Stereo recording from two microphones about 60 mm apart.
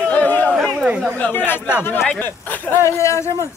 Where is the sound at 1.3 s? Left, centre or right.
Left.